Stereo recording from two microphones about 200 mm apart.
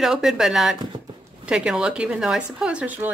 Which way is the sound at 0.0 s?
Centre (ahead or behind).